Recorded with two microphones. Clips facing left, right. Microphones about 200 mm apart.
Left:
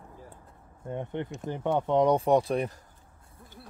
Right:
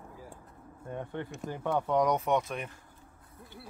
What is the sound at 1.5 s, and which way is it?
Speech, 25° left (ahead or behind).